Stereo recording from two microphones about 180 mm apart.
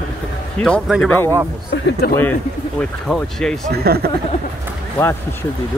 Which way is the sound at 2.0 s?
60° left (ahead or behind).